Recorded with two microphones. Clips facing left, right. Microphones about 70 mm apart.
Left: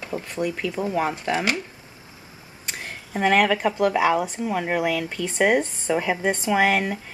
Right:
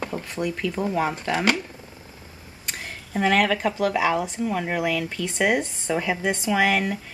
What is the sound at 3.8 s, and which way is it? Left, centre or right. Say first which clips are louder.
Speech: left 3 dB; centre.